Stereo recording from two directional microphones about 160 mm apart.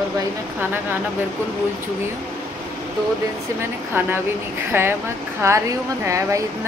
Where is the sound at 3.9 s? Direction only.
15° right (ahead or behind).